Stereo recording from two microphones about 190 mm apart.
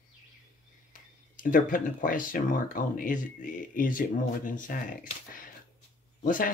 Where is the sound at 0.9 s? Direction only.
45° left (ahead or behind).